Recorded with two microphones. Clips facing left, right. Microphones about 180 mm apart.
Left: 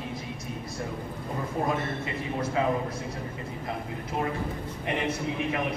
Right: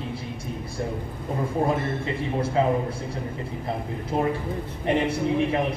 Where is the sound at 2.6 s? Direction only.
30° right (ahead or behind).